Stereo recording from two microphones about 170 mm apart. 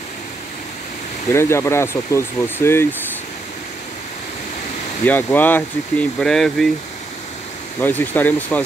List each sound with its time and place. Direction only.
1.3 s speech: 15° left (ahead or behind)
5.0 s speech: 10° left (ahead or behind)
7.8 s speech: 10° left (ahead or behind)